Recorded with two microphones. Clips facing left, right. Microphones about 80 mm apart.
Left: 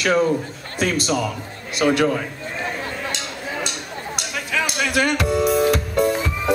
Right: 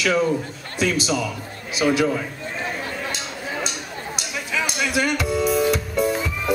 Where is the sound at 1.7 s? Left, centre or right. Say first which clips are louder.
Left 1 dB; centre.